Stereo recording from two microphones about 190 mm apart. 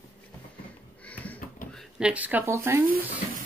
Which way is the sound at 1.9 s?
5° right (ahead or behind).